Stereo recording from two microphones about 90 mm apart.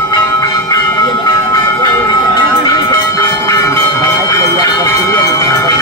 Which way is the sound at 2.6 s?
40° left (ahead or behind).